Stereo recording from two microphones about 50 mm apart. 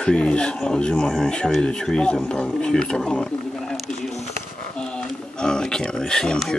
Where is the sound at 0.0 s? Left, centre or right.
Centre.